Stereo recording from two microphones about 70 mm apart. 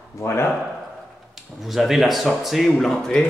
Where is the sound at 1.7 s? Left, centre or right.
Centre.